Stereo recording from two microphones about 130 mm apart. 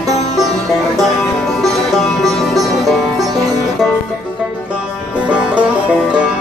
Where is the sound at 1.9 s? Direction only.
Centre (ahead or behind).